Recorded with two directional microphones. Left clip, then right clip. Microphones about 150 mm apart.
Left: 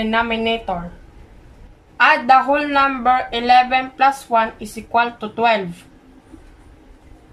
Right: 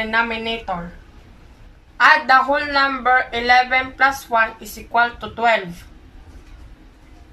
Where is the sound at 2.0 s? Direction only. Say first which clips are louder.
Even; 5° left (ahead or behind).